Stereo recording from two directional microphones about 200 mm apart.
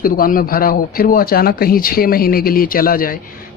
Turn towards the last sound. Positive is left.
turn(degrees=45)  # may be behind; listen again after turning